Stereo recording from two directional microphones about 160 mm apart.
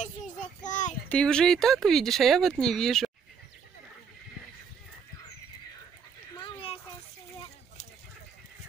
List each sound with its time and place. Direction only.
0.7 s child singing: 50° left (ahead or behind)
1.0 s speech: 5° left (ahead or behind)
6.4 s a sound: 35° left (ahead or behind)